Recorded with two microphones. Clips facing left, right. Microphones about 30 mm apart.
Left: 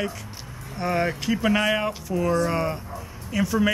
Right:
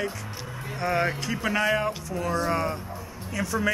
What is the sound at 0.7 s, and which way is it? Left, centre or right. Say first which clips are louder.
Speech: left 1 dB; centre.